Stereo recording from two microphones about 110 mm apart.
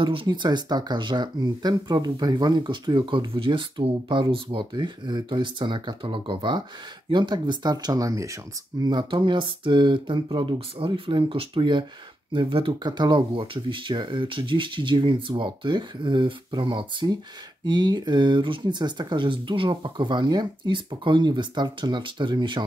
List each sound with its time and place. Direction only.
0.0 s speech: 50° right (ahead or behind); by 8.4 s 30° right (ahead or behind)
8.8 s speech: 45° right (ahead or behind)